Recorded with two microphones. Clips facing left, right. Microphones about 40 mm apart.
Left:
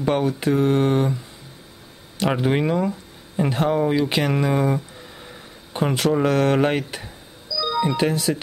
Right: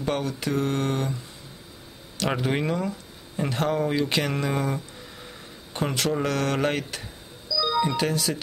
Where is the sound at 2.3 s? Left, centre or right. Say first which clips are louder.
Left 5 dB; centre.